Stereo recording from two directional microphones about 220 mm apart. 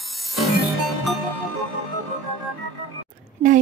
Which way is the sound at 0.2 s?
Centre (ahead or behind).